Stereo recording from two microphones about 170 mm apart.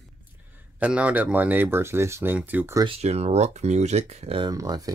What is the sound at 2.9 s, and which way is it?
Speech, 40° right (ahead or behind).